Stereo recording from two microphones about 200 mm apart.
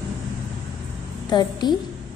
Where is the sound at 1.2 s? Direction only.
20° left (ahead or behind).